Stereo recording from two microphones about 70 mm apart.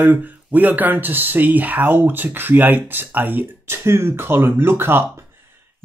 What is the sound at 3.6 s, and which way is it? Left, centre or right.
Speech, right.